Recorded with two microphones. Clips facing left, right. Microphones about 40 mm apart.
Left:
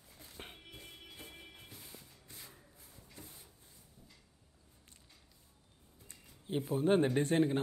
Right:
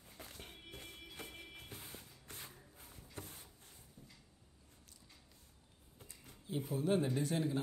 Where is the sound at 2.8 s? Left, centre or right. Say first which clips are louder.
Right 5 dB; right.